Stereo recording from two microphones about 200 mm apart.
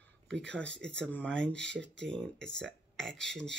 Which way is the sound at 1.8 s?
65° right (ahead or behind).